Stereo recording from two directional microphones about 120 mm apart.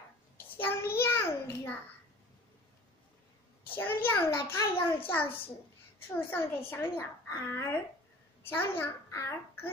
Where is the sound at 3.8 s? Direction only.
15° left (ahead or behind).